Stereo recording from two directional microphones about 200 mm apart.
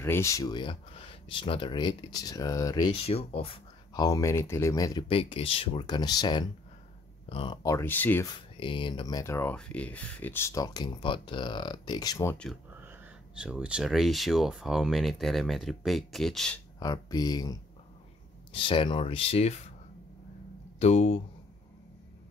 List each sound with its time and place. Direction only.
0.0 s speech: 15° left (ahead or behind)
5.0 s speech: 30° left (ahead or behind); by 8.3 s 10° left (ahead or behind)
8.5 s speech: 25° left (ahead or behind)
12.8 s speech: 5° right (ahead or behind)
16.8 s speech: 20° left (ahead or behind)
20.8 s speech: 30° left (ahead or behind)